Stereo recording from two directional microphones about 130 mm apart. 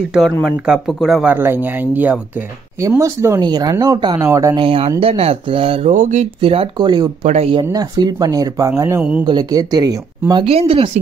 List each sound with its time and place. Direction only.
0.1 s speech: 5° right (ahead or behind)
1.3 s speech: 15° right (ahead or behind)
3.3 s speech: 30° right (ahead or behind)
4.6 s speech: 45° right (ahead or behind)
5.9 s a sound: 70° right (ahead or behind)
6.4 s speech: 45° right (ahead or behind); by 9.0 s 20° right (ahead or behind)
9.2 s speech: 30° right (ahead or behind)
10.4 s speech: 45° right (ahead or behind)